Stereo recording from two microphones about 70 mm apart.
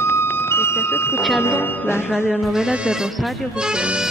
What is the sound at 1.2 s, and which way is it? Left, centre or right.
Speech, centre.